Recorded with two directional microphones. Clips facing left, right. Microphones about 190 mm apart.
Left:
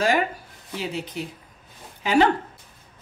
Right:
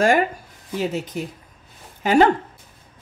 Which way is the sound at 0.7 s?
45° right (ahead or behind).